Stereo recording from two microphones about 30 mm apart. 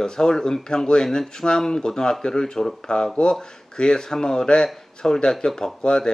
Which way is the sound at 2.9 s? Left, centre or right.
Left.